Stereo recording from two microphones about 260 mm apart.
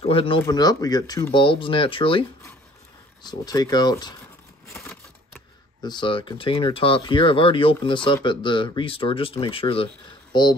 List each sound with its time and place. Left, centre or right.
0.0 s speech: left